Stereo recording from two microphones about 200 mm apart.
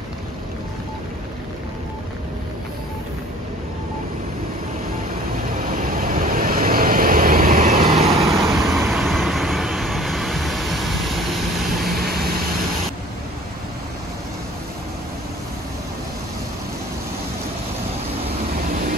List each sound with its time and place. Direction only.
5.5 s vehicle: 45° right (ahead or behind)
7.8 s vehicle: 30° right (ahead or behind)
8.2 s vehicle: centre (ahead or behind)